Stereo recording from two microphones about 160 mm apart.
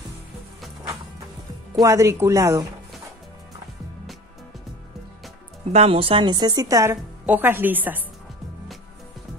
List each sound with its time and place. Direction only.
1.8 s speech: 20° right (ahead or behind)
5.7 s speech: 40° right (ahead or behind); by 8.0 s 10° right (ahead or behind)